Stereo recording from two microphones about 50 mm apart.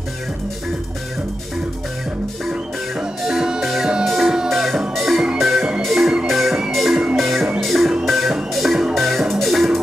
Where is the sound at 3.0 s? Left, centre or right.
Centre.